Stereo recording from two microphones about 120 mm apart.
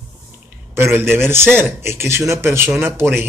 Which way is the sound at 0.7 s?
20° right (ahead or behind).